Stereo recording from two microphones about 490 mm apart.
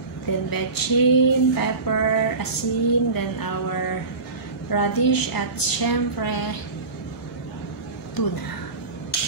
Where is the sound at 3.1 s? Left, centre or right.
Left.